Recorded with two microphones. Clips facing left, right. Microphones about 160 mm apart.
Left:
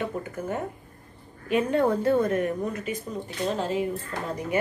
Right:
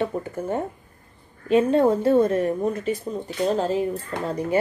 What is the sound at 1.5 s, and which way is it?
A woman's voice, 25° right (ahead or behind).